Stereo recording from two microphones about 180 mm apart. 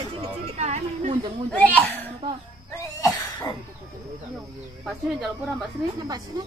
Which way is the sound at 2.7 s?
15° left (ahead or behind).